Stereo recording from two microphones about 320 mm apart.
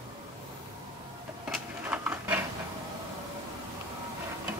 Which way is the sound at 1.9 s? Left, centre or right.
Centre.